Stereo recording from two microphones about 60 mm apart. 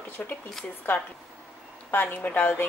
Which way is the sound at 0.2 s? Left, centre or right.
Left.